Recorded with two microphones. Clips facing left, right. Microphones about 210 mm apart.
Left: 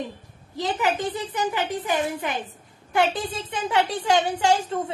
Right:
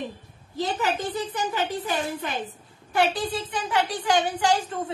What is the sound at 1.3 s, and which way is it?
A woman's voice, 15° left (ahead or behind).